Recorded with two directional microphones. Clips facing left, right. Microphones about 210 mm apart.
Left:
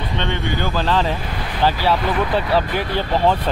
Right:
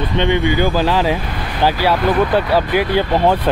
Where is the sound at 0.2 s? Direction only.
15° right (ahead or behind).